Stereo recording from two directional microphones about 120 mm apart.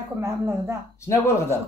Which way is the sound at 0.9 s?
25° left (ahead or behind).